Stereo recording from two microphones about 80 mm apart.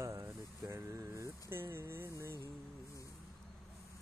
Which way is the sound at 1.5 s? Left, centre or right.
Right.